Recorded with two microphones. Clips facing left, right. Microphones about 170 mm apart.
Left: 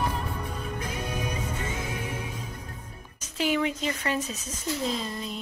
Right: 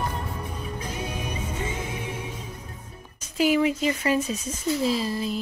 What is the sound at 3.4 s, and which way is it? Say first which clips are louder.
Speech: right 5 dB; 5° right (ahead or behind).